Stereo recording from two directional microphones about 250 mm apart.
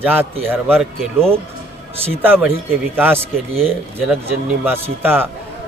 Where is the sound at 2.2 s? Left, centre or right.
Centre.